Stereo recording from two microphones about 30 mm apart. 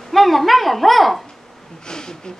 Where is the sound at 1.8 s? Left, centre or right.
Left.